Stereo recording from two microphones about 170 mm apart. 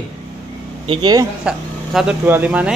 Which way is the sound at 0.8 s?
25° right (ahead or behind).